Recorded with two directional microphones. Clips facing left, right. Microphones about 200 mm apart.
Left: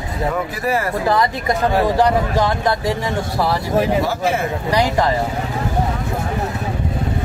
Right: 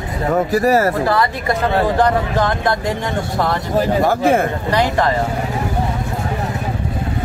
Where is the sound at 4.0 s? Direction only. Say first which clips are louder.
Right 5 dB; 50° right (ahead or behind).